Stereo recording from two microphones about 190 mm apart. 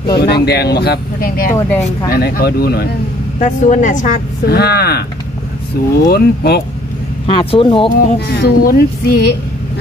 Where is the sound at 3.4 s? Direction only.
40° left (ahead or behind); by 5.0 s 60° left (ahead or behind).